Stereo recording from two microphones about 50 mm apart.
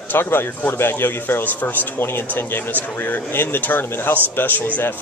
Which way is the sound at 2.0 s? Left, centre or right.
Left.